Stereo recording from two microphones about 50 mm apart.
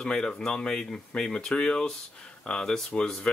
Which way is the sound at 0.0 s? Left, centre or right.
Centre.